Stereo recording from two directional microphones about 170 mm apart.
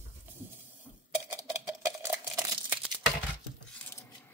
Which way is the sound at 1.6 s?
15° right (ahead or behind).